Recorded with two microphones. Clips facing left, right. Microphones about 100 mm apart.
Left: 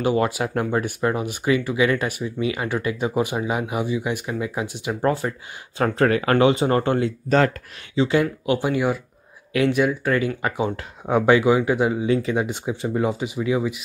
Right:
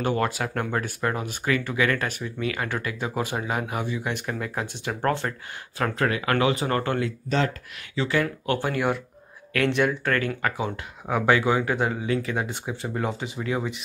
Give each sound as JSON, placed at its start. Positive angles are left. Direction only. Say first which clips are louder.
{"t": 0.0, "sound": "speech", "louder": "left 4 dB", "side_deg": 10}
{"t": 5.8, "sound": "speech", "louder": "left 6 dB", "side_deg": 35}
{"t": 7.2, "sound": "speech", "louder": "left 7 dB", "side_deg": 55}
{"t": 7.9, "sound": "speech", "louder": "left 5 dB", "side_deg": 20}